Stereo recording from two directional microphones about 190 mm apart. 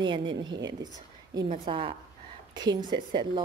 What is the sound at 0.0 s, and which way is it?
Speech, 25° right (ahead or behind).